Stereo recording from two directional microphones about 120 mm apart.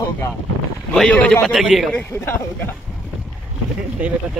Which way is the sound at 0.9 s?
5° left (ahead or behind).